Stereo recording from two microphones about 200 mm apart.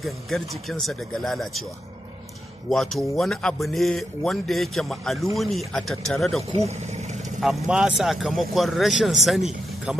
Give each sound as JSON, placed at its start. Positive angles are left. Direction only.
{"t": 0.0, "sound": "speech", "side_deg": 0}
{"t": 2.7, "sound": "speech", "side_deg": 0}
{"t": 6.5, "sound": "vehicle", "side_deg": -35}
{"t": 7.3, "sound": "speech", "side_deg": 0}